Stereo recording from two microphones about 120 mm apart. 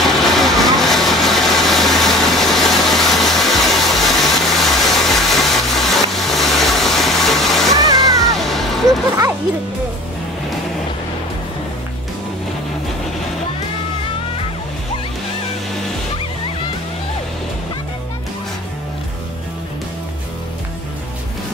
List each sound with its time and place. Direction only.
0.0 s vehicle: centre (ahead or behind)
7.7 s music: 30° right (ahead or behind)
8.4 s a sound: centre (ahead or behind)